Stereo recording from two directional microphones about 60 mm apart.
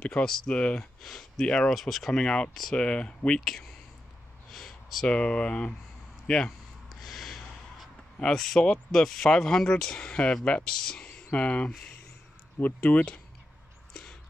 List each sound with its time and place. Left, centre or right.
0.0 s speech: centre
1.8 s speech: centre
2.1 s speech: centre
3.3 s speech: centre
4.5 s a sound: centre
5.0 s speech: centre
6.9 s snort: centre
8.2 s speech: centre; by 13.0 s left